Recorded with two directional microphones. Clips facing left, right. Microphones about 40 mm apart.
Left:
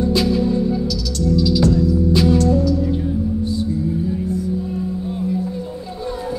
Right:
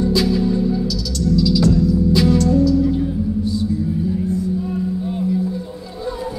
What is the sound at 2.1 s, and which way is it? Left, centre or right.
Music, left.